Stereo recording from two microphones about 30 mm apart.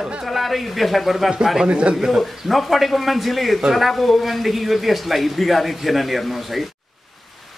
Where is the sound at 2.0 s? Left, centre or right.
Centre.